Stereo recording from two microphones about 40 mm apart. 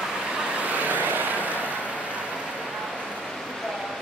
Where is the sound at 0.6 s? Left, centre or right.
Right.